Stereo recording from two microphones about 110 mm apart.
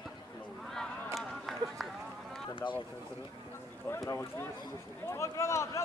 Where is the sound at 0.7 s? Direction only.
Centre (ahead or behind).